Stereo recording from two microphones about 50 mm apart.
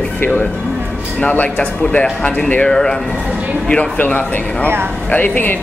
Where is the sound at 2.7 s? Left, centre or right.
Centre.